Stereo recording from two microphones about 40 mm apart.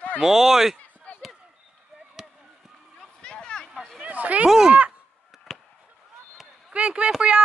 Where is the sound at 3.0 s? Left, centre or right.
Left.